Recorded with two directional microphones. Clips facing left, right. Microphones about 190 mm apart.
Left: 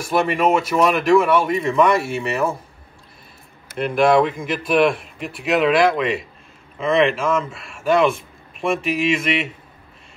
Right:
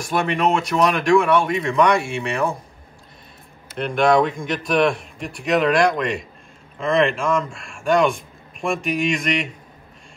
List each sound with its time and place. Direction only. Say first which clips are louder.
0.0 s a man's voice: left 2 dB; 5° left (ahead or behind)
3.7 s a man's voice: left 1 dB; 5° left (ahead or behind)